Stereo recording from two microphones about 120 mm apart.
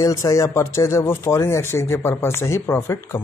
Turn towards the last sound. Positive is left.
turn(degrees=20)  # may be behind; listen again after turning